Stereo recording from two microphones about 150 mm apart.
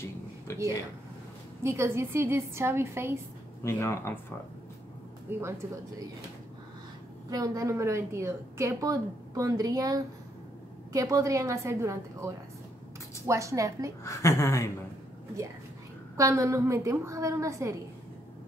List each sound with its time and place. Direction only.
0.5 s speech: 20° left (ahead or behind)
1.6 s a woman's voice: 20° right (ahead or behind)
3.6 s speech: 20° left (ahead or behind)
5.4 s a woman's voice: 20° right (ahead or behind)
7.2 s a woman's voice: 25° right (ahead or behind)
14.0 s speech: 20° left (ahead or behind)
16.2 s a woman's voice: 20° right (ahead or behind)